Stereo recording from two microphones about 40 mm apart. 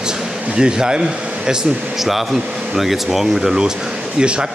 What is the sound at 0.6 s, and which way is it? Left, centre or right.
Speech, centre.